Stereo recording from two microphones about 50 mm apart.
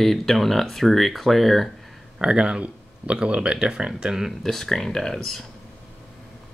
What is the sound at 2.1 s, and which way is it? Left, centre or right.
Speech, centre.